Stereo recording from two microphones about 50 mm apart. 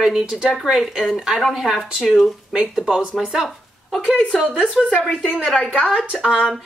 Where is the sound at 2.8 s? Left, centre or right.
Centre.